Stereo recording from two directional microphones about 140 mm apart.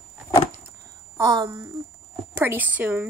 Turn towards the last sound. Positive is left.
turn(degrees=-10)  # may be behind; listen again after turning